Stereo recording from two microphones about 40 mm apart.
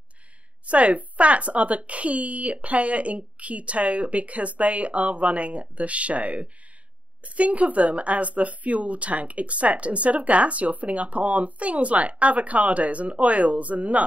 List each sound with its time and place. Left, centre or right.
0.7 s speech: right